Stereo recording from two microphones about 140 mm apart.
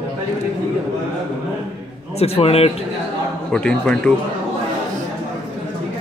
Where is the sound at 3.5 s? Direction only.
5° left (ahead or behind).